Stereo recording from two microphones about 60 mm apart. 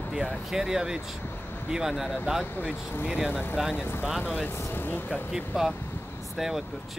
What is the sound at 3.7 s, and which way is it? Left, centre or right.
Speech, left.